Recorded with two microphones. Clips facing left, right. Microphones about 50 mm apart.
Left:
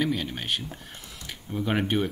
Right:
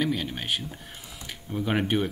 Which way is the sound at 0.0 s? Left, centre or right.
Centre.